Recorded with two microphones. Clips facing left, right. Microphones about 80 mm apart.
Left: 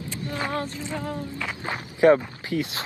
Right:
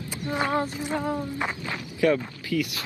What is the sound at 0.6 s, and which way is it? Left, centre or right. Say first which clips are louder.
Speech: right 3 dB; centre.